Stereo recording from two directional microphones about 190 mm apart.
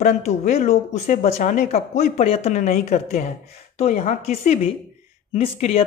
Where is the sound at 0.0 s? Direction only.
35° left (ahead or behind).